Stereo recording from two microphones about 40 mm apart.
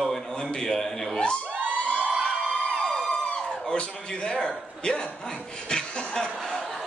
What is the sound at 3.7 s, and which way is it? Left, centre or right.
Speech, left.